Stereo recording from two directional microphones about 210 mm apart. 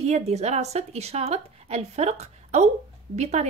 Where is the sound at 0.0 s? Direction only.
30° right (ahead or behind).